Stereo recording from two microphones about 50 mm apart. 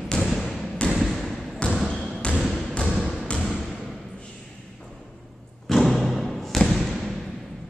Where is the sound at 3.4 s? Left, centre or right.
Centre.